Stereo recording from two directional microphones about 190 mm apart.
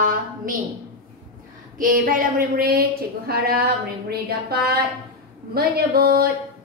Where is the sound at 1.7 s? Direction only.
45° right (ahead or behind).